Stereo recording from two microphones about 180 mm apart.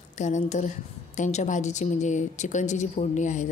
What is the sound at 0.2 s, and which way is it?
A woman's voice, 40° left (ahead or behind).